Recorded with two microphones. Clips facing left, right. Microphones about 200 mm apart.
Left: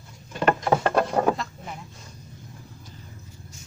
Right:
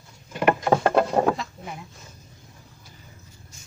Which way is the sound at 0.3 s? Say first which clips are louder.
Right 1 dB; 15° right (ahead or behind).